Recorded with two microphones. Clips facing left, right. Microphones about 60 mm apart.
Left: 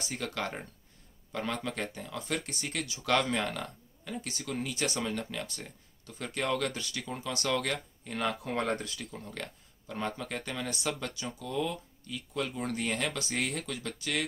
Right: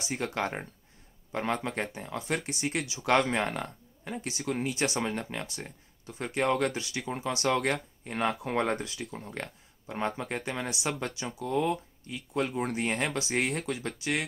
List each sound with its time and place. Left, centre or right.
0.0 s speech: right
10.7 s speech: centre
11.0 s speech: right
11.4 s speech: right